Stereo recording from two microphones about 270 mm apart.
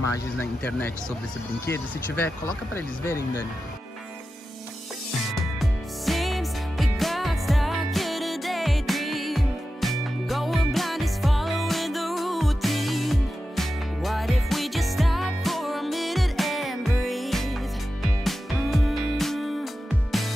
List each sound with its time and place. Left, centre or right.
0.4 s speech: centre
5.6 s music: centre